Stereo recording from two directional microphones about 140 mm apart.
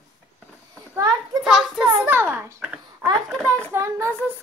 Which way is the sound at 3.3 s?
10° left (ahead or behind).